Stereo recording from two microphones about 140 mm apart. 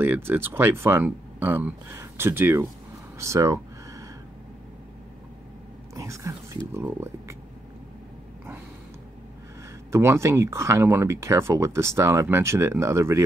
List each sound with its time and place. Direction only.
0.0 s speech: 15° right (ahead or behind)
3.2 s a sound: 20° right (ahead or behind)
5.9 s whispering: 20° right (ahead or behind)
6.7 s speech: 15° right (ahead or behind)
9.8 s speech: 20° right (ahead or behind)